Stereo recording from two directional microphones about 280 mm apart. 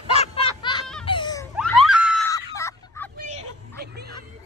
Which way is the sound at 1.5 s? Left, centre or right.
Centre.